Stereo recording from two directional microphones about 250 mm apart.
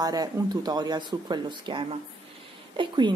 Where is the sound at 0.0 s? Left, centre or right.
Centre.